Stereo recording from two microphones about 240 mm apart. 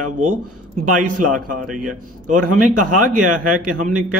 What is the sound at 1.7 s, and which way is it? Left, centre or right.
Speech, centre.